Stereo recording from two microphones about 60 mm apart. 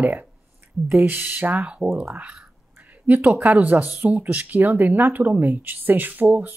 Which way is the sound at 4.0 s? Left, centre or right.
Right.